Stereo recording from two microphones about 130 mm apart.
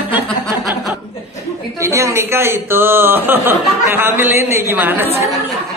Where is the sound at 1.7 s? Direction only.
20° right (ahead or behind).